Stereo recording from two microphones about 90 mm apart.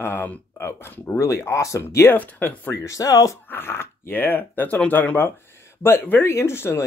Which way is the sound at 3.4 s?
25° left (ahead or behind).